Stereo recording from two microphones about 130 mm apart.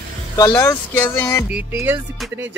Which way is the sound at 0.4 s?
20° left (ahead or behind).